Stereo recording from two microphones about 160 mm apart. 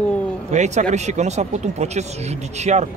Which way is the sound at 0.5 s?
45° right (ahead or behind).